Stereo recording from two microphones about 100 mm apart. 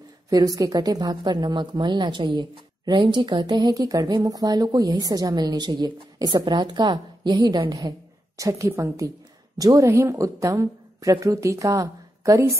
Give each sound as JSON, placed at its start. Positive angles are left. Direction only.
{"t": 0.3, "sound": "a woman's voice", "side_deg": -35}
{"t": 8.4, "sound": "speech", "side_deg": -35}